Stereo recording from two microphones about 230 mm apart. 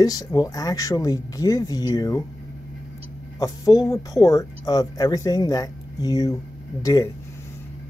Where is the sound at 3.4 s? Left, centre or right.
Centre.